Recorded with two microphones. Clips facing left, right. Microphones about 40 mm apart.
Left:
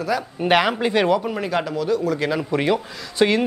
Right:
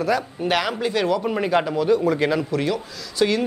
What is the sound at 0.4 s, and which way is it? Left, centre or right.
Speech, left.